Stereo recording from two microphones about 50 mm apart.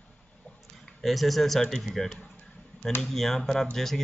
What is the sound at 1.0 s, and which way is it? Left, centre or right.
A man's voice, centre.